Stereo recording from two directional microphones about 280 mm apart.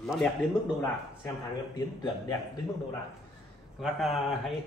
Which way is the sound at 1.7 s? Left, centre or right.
Centre.